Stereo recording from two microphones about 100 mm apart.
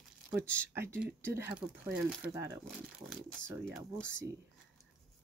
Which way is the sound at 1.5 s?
5° right (ahead or behind).